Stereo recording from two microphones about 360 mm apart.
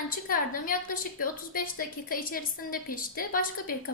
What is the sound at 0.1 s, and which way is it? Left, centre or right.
A woman's voice, left.